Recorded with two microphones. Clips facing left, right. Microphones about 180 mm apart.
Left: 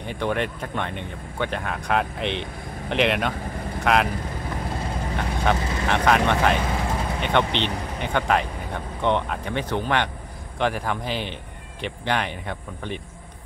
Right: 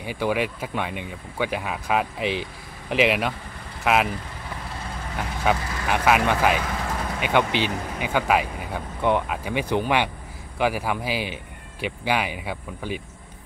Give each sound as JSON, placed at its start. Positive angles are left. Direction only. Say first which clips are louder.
{"t": 0.0, "sound": "speech", "louder": "right 1 dB", "side_deg": -5}
{"t": 5.1, "sound": "speech", "louder": "even", "side_deg": -5}